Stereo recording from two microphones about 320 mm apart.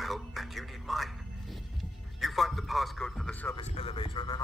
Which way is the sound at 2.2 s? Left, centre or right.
Centre.